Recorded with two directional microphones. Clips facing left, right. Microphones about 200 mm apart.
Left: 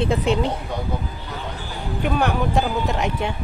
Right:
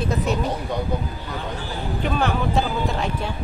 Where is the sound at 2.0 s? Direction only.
10° left (ahead or behind).